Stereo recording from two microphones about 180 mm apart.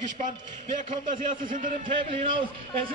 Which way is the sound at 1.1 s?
50° right (ahead or behind).